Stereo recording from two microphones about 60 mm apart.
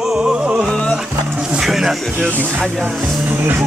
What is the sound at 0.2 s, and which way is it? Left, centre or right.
Music, centre.